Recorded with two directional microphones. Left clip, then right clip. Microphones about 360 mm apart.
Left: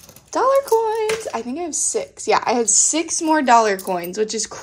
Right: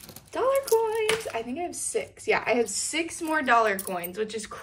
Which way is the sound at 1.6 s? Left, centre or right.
Left.